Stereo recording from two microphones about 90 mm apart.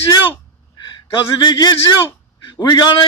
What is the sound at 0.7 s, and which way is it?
A man's voice, 55° left (ahead or behind).